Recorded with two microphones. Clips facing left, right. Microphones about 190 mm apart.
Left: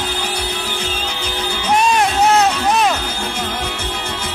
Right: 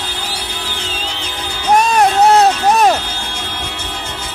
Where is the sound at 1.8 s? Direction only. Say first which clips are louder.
Right 3 dB; 40° right (ahead or behind).